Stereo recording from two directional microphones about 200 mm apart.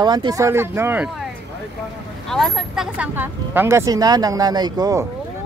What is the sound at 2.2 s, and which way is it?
Speech, centre (ahead or behind).